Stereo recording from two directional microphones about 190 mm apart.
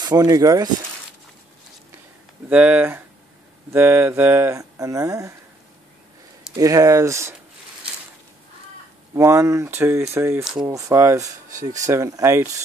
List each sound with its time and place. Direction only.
0.0 s speech: 20° right (ahead or behind)
2.5 s speech: 5° right (ahead or behind)
6.5 s speech: 15° right (ahead or behind)
9.1 s speech: 15° right (ahead or behind)